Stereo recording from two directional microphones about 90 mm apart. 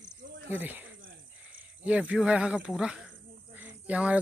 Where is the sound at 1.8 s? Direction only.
15° right (ahead or behind).